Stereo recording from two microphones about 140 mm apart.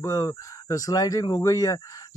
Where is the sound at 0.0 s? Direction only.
20° left (ahead or behind).